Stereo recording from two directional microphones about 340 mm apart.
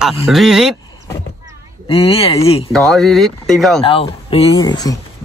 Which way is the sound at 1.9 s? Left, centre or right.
Centre.